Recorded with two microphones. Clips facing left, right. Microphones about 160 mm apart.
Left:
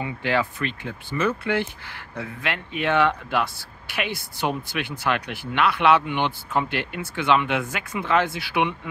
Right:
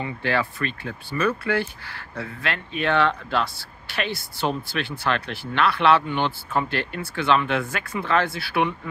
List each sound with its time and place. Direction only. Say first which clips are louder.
0.0 s speech: left 1 dB; 15° left (ahead or behind)